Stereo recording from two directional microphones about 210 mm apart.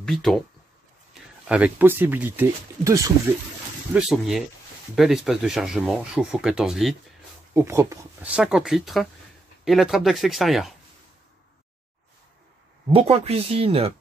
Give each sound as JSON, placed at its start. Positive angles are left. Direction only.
{"t": 0.0, "sound": "speech", "side_deg": 0}
{"t": 1.5, "sound": "speech", "side_deg": -10}
{"t": 3.9, "sound": "speech", "side_deg": 0}
{"t": 7.5, "sound": "speech", "side_deg": -15}
{"t": 12.9, "sound": "speech", "side_deg": -30}